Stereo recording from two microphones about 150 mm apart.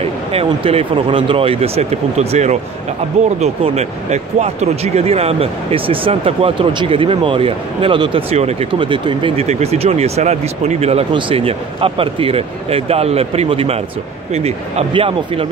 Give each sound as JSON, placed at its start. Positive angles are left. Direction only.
{"t": 0.3, "sound": "speech", "side_deg": -40}
{"t": 9.5, "sound": "speech", "side_deg": -45}